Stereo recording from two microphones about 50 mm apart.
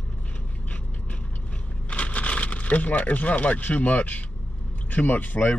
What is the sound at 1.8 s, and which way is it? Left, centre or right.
Speech, left.